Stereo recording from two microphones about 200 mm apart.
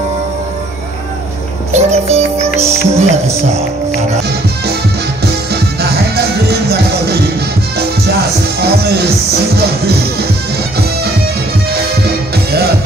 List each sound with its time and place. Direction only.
1.7 s music: 35° right (ahead or behind)
2.6 s speech: 15° right (ahead or behind)
5.2 s music: 55° right (ahead or behind)
8.5 s music: 50° right (ahead or behind)